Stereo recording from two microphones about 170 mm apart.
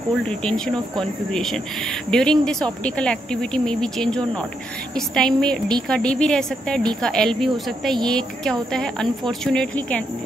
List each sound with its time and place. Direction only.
0.3 s speech: 5° left (ahead or behind)